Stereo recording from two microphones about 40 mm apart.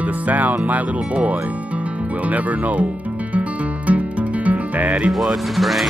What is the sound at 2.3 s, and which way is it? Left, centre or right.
Music, right.